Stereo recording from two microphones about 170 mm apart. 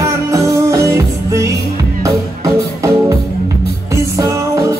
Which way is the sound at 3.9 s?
20° right (ahead or behind).